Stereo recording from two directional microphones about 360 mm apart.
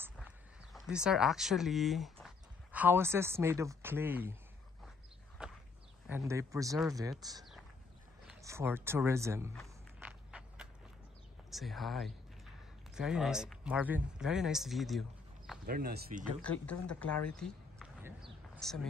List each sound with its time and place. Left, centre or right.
0.7 s speech: centre
5.4 s a sound: centre
6.0 s speech: centre
8.3 s a sound: centre
11.5 s speech: centre
15.6 s speech: right
16.8 s speech: centre
17.4 s a sound: centre
18.6 s speech: centre